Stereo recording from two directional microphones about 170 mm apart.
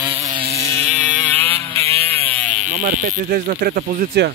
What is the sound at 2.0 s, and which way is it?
Wood, 10° left (ahead or behind).